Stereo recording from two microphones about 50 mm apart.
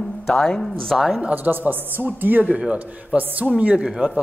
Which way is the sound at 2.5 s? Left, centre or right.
Right.